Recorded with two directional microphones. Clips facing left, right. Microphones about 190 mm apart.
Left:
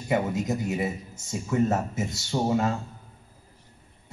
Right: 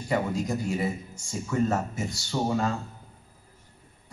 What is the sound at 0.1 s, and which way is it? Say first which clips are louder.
A man's voice: left 2 dB; 20° left (ahead or behind).